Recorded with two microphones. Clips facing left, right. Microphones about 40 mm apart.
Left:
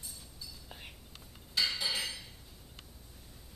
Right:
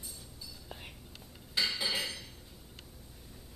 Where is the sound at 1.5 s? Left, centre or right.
Centre.